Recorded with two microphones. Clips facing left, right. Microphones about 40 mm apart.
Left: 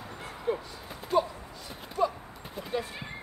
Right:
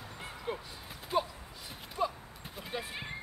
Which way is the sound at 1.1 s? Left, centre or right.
Centre.